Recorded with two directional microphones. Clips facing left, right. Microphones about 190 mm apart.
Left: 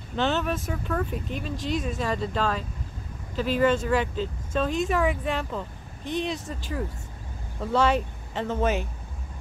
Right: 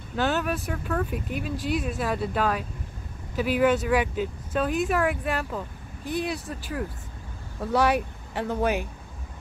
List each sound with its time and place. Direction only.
0.1 s speech: 5° right (ahead or behind)